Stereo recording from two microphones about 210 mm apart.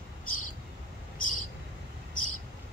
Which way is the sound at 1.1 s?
40° left (ahead or behind).